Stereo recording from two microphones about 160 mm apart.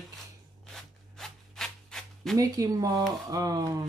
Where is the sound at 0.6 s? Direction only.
Centre (ahead or behind).